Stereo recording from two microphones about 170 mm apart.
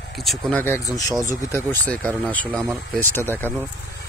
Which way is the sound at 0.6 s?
20° left (ahead or behind).